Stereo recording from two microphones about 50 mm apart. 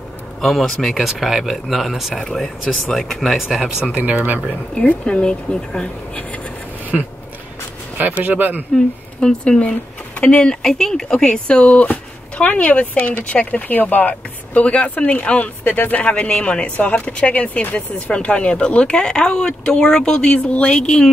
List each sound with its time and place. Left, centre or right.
0.4 s speech: centre
0.9 s speech: centre
3.4 s speech: centre
3.9 s speech: right
4.7 s speech: left
8.2 s speech: right
9.4 s speech: left